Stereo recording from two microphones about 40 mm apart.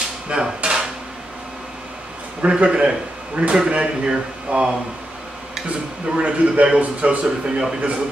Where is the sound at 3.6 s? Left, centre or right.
Right.